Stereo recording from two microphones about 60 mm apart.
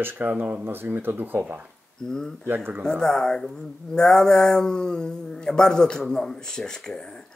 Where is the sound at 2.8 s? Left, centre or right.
Centre.